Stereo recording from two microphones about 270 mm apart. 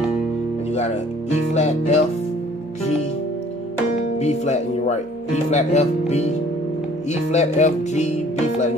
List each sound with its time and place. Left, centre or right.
1.5 s speech: left
4.2 s speech: left